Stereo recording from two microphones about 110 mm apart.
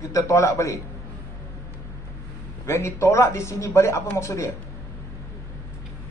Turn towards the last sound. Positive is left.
turn(degrees=25)  # may be behind; listen again after turning